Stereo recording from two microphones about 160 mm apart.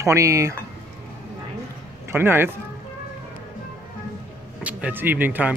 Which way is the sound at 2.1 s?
15° right (ahead or behind).